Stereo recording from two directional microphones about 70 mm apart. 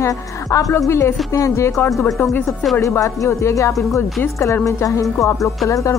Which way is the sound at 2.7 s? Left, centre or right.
Left.